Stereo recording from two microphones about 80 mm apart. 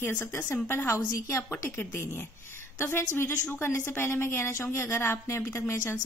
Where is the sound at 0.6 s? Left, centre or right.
Left.